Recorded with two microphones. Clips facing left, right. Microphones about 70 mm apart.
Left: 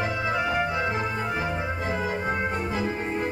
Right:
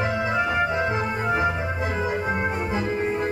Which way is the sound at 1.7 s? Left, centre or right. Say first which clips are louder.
Right 2 dB; centre.